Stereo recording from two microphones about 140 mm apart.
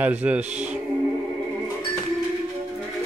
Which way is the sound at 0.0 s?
10° right (ahead or behind).